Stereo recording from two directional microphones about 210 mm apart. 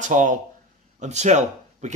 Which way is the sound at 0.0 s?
35° right (ahead or behind).